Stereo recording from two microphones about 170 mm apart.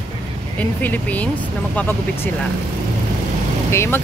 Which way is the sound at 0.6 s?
10° left (ahead or behind).